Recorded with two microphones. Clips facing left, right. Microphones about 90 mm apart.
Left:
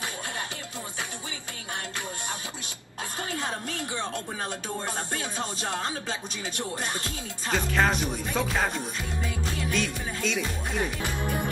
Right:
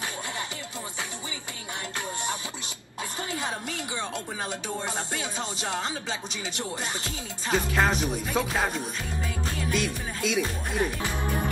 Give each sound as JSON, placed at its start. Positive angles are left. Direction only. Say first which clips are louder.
{"t": 4.1, "sound": "music", "louder": "even", "side_deg": -15}
{"t": 7.5, "sound": "music", "louder": "even", "side_deg": -5}